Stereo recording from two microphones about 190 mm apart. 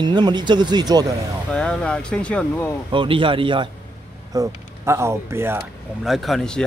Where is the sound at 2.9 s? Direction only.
25° right (ahead or behind).